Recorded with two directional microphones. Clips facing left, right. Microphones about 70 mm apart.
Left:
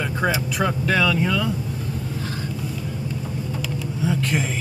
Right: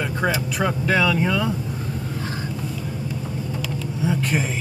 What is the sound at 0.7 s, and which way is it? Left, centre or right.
Speech, centre.